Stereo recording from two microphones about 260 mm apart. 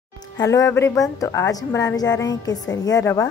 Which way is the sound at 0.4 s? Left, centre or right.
Centre.